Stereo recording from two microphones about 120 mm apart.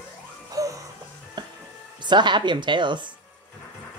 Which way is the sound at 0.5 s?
30° right (ahead or behind).